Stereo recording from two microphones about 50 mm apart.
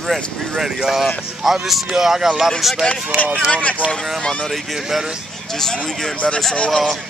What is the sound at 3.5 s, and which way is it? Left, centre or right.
Speech, left.